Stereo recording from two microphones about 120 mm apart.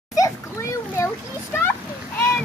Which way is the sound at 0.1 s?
25° left (ahead or behind).